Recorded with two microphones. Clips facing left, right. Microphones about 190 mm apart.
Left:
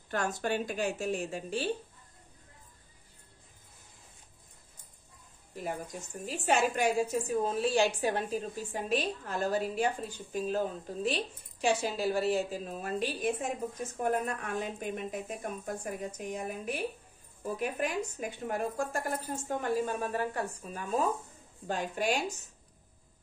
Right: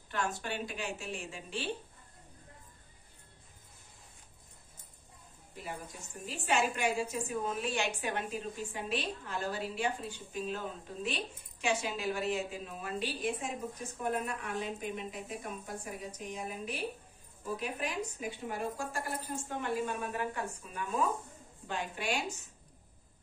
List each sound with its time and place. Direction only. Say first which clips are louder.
0.1 s a woman's voice: left 5 dB; 45° left (ahead or behind)
6.2 s a woman's voice: left 3 dB; 40° left (ahead or behind)